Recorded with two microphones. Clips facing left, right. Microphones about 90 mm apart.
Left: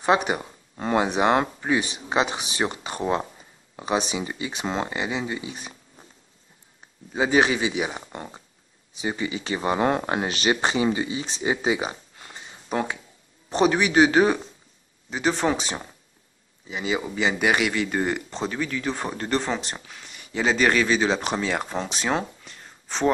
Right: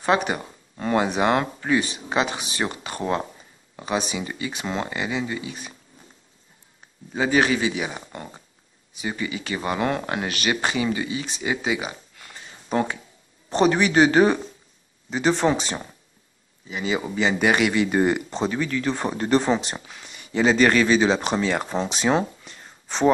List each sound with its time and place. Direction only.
0.0 s speech: 15° left (ahead or behind)
7.2 s speech: 20° left (ahead or behind)
12.6 s speech: 5° left (ahead or behind)